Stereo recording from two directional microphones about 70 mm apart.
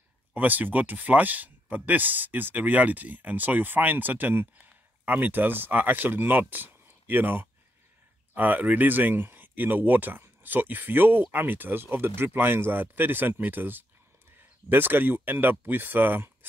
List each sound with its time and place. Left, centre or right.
0.3 s speech: right